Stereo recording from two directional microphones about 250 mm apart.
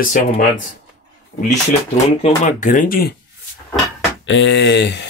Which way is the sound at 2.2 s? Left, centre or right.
Left.